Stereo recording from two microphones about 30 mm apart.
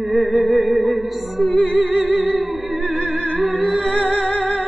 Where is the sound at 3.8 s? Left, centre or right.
Left.